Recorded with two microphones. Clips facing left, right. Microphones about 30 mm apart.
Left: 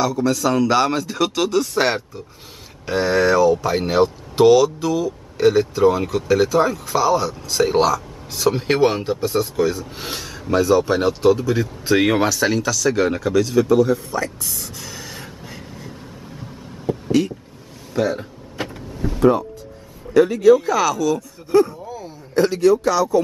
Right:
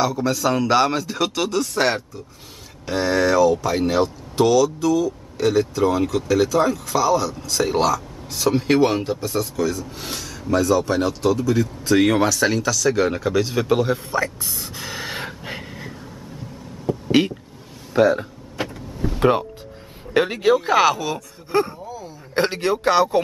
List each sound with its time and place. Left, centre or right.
0.0 s speech: centre
9.2 s speech: centre
12.4 s speech: centre
13.3 s speech: centre
13.7 s speech: right
14.1 s gasp: centre; by 15.9 s right
16.9 s a sound: centre
18.0 s a sound: centre
18.7 s vehicle: centre
19.1 s music: right
20.2 s a man's voice: right